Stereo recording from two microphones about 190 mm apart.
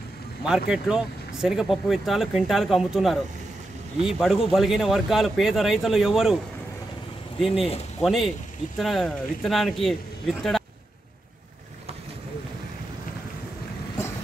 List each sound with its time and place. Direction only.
0.4 s speech: 5° right (ahead or behind)
7.5 s speech: 30° left (ahead or behind)
8.0 s speech: centre (ahead or behind)